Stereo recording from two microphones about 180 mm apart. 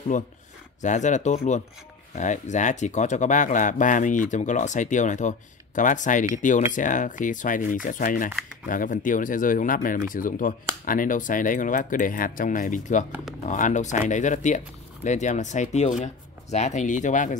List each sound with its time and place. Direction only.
0.1 s speech: 45° left (ahead or behind)